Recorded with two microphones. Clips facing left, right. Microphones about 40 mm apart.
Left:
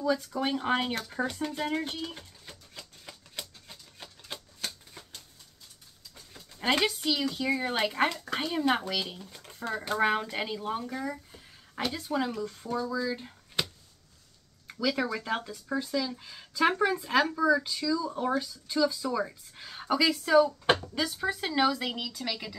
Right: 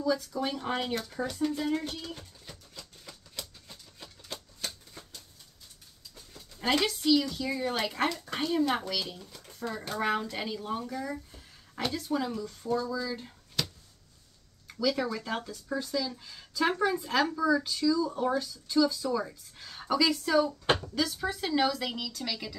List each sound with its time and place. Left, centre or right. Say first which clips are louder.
0.0 s speech: left 1 dB; left
6.6 s speech: left 1 dB; left
11.9 s speech: even; left
14.7 s speech: even; centre